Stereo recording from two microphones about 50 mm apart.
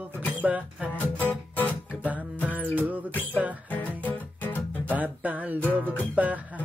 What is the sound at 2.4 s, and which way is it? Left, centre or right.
Music, right.